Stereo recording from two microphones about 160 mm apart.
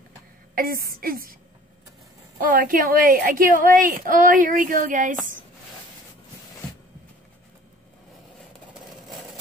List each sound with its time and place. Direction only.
0.6 s a woman's voice: 65° right (ahead or behind)
2.3 s a woman's voice: 60° right (ahead or behind)
8.9 s engine: centre (ahead or behind)